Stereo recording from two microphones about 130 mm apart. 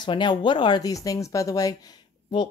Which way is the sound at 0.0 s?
35° left (ahead or behind).